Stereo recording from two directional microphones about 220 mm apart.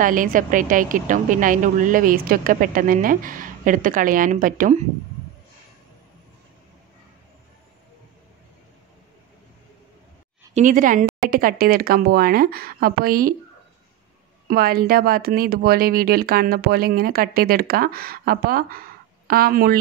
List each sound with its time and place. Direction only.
0.0 s a woman's voice: 35° right (ahead or behind)
10.5 s a woman's voice: 35° right (ahead or behind)
14.5 s speech: 45° right (ahead or behind)